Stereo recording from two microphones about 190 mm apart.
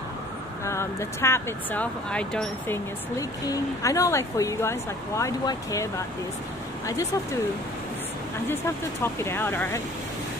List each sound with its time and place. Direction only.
0.7 s speech: 15° left (ahead or behind)
3.2 s speech: 15° left (ahead or behind)
8.5 s speech: 15° left (ahead or behind)